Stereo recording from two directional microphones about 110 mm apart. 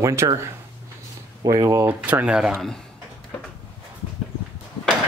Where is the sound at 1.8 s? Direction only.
15° right (ahead or behind); by 2.8 s centre (ahead or behind).